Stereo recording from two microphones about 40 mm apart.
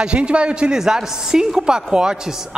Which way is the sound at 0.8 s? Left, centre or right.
Centre.